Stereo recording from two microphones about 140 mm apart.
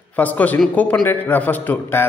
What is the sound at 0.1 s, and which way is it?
A man's voice, 10° left (ahead or behind).